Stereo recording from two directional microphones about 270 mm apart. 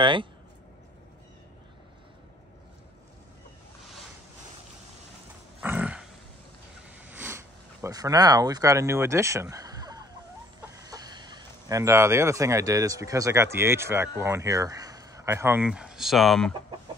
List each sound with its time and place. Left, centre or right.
0.0 s speech: centre
5.6 s dog: centre
7.1 s sniff: centre
10.8 s speech: centre